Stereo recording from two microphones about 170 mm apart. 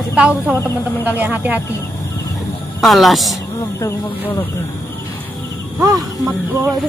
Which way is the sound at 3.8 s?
15° left (ahead or behind).